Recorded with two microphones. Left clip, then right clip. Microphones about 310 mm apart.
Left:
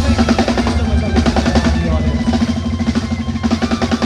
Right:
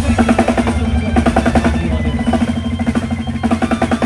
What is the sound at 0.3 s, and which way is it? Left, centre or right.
Music, centre.